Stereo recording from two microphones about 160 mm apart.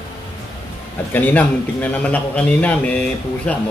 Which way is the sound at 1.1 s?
10° left (ahead or behind).